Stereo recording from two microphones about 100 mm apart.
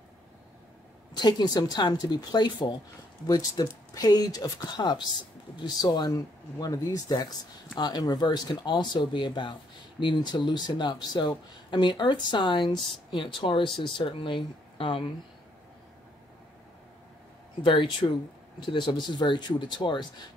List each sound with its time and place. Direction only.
1.1 s speech: 45° left (ahead or behind)
17.6 s speech: 50° left (ahead or behind)